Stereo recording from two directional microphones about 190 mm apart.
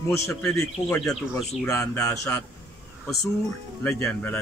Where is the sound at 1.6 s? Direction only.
15° left (ahead or behind).